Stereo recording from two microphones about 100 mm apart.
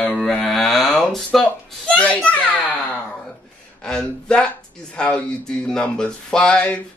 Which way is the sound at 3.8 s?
5° left (ahead or behind).